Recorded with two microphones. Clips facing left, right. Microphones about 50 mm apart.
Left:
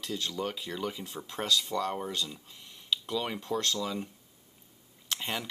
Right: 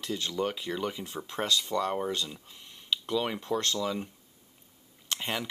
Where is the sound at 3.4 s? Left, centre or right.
Right.